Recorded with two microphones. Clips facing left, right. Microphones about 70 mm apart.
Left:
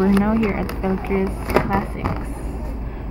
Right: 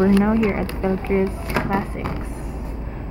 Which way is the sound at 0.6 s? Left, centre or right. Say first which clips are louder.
Even; centre.